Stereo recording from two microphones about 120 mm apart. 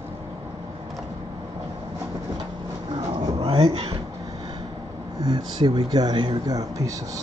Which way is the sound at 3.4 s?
45° right (ahead or behind).